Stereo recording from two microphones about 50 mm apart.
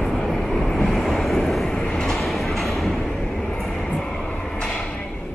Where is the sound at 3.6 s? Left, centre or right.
Centre.